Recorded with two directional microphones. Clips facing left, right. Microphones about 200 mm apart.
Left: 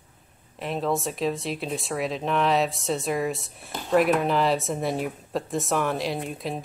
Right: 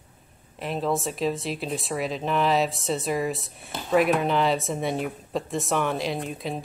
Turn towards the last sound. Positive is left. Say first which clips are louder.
# even
turn(degrees=0)  # may be behind; listen again after turning